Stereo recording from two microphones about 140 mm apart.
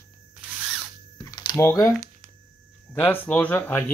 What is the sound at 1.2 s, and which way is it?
Typing, 25° left (ahead or behind).